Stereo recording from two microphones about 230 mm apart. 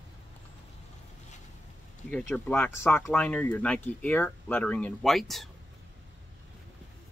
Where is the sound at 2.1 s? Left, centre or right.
Centre.